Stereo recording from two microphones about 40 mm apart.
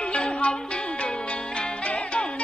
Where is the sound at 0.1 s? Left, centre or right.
Left.